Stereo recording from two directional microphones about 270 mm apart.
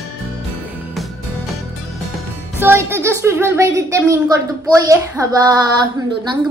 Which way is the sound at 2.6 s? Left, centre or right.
Centre.